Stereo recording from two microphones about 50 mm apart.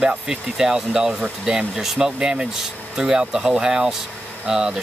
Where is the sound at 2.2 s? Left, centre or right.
Centre.